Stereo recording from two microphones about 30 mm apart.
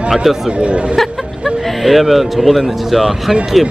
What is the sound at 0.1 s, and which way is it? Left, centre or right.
Speech, centre.